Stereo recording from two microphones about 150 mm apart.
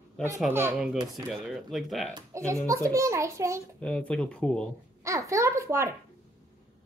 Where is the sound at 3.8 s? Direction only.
10° left (ahead or behind).